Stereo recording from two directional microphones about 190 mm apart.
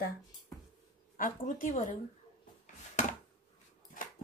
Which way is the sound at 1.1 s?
45° left (ahead or behind).